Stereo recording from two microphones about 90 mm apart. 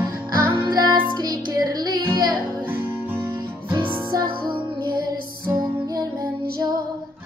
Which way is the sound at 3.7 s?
55° right (ahead or behind).